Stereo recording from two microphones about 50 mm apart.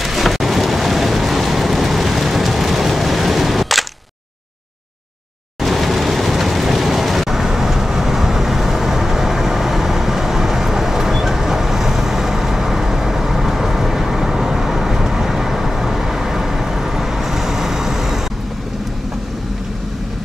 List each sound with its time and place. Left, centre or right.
0.0 s vehicle: centre
5.6 s vehicle: centre